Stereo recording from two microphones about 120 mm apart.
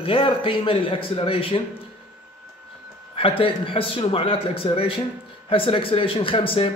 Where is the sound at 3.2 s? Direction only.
50° left (ahead or behind).